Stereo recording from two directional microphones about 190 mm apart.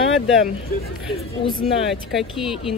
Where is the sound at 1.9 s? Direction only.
Centre (ahead or behind).